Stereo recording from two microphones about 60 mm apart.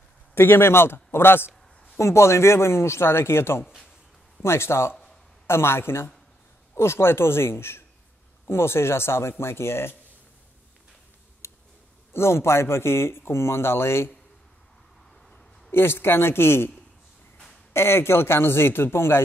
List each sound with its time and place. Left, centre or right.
0.3 s a man's voice: left
2.0 s speech: left
11.4 s tick: left
12.1 s speech: left
15.7 s a man's voice: left
17.7 s speech: left